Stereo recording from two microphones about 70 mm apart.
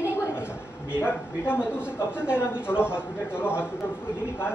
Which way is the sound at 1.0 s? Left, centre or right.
Left.